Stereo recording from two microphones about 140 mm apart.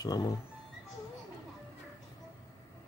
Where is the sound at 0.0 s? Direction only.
25° left (ahead or behind).